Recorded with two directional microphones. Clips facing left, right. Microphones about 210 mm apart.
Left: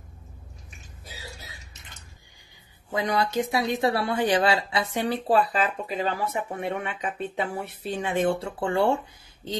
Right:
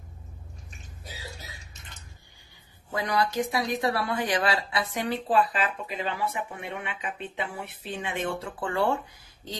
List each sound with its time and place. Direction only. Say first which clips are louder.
2.9 s a woman's voice: left 2 dB; 25° left (ahead or behind)
5.0 s speech: left 2 dB; 35° left (ahead or behind)